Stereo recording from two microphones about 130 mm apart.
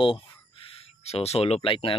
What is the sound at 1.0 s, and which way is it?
Speech, 55° left (ahead or behind).